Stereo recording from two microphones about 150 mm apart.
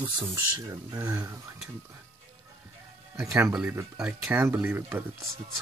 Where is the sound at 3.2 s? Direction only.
20° right (ahead or behind).